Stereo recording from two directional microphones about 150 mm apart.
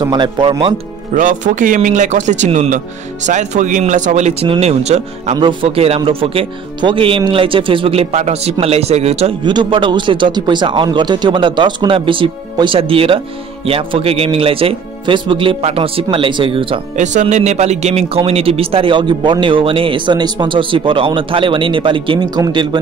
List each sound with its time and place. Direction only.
0.0 s speech: 30° right (ahead or behind)
1.1 s speech: 60° right (ahead or behind)
5.4 s speech: 35° right (ahead or behind)
9.4 s speech: 30° right (ahead or behind)
16.9 s speech: 55° right (ahead or behind); by 22.8 s 30° right (ahead or behind)